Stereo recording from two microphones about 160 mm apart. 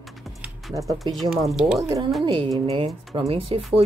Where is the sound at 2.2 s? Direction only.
30° right (ahead or behind).